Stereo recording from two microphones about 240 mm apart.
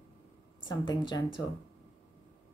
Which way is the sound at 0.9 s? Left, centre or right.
Centre.